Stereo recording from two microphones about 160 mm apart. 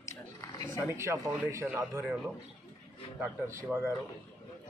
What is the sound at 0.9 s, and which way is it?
Speech, 15° right (ahead or behind).